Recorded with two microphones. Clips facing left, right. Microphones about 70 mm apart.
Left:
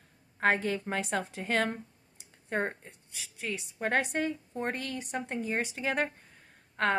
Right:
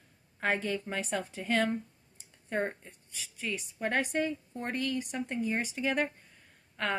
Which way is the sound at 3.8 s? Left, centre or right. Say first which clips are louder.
Left 1 dB; left.